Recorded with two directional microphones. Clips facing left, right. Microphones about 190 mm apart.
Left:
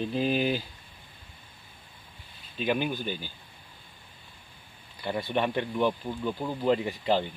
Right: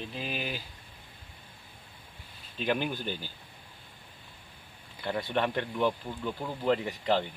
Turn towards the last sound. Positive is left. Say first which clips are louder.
# left 2 dB
turn(degrees=20)  # may be behind; listen again after turning